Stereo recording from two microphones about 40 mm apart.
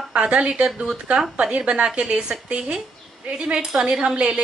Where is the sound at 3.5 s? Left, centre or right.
Centre.